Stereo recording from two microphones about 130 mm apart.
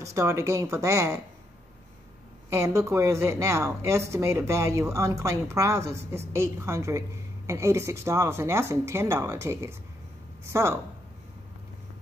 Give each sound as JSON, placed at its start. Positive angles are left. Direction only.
{"t": 0.1, "sound": "a woman's voice", "side_deg": -20}
{"t": 2.5, "sound": "a woman's voice", "side_deg": -20}